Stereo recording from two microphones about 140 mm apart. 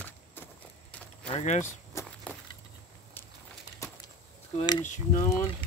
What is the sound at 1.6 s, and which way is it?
Walk, 20° left (ahead or behind).